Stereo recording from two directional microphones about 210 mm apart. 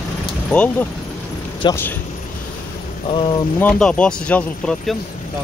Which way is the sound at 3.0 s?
25° left (ahead or behind).